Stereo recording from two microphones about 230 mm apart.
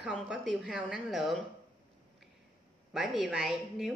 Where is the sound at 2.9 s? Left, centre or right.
Centre.